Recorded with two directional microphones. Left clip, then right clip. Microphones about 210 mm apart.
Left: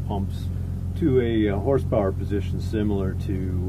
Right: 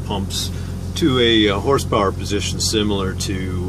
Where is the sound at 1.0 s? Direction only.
5° left (ahead or behind).